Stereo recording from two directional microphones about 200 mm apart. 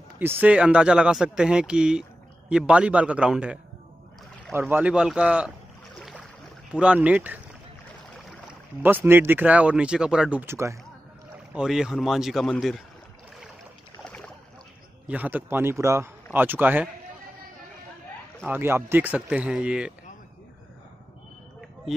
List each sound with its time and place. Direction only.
0.2 s speech: 10° right (ahead or behind)
4.6 s speech: 10° right (ahead or behind)
5.9 s boat: centre (ahead or behind)
6.7 s speech: 5° right (ahead or behind)
11.5 s speech: 5° right (ahead or behind)
14.0 s boat: 5° left (ahead or behind)
15.0 s speech: 10° right (ahead or behind)
18.5 s speech: 10° right (ahead or behind)